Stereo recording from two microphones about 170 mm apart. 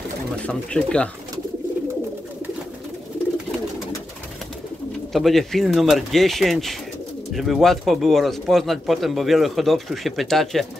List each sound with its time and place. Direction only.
0.5 s speech: 5° left (ahead or behind)
5.1 s speech: centre (ahead or behind)